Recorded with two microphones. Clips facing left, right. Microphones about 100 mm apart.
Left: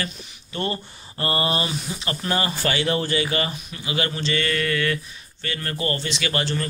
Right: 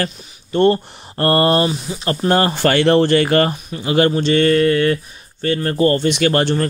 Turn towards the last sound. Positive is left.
turn(degrees=-50)  # may be behind; listen again after turning